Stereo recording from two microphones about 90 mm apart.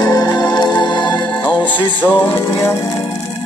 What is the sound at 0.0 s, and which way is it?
Music, 45° left (ahead or behind).